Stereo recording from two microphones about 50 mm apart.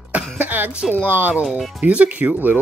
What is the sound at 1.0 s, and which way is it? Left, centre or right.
Humming, right.